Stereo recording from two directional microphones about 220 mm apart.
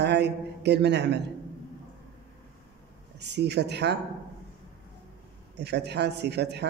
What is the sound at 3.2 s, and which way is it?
Speech, 50° right (ahead or behind).